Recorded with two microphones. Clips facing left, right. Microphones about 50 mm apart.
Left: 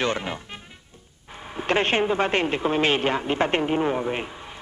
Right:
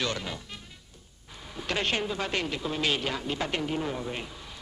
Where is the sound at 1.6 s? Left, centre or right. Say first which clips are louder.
Left 8 dB; left.